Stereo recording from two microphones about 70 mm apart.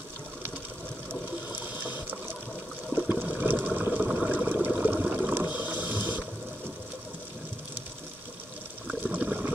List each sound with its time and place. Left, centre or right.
2.9 s water: right
3.6 s a sound: right
5.3 s ratchet: right
9.0 s water: right